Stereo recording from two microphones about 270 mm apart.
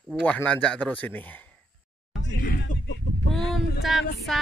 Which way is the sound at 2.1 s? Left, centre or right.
Left.